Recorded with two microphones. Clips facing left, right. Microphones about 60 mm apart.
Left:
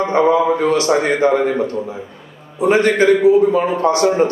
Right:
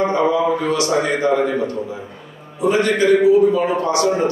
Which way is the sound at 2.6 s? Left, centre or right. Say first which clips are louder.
Left 3 dB; left.